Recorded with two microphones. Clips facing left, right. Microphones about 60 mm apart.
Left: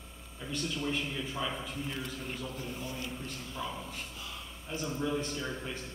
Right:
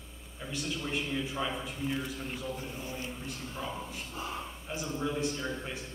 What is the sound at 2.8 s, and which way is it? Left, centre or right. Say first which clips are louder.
Speech: right 1 dB; right.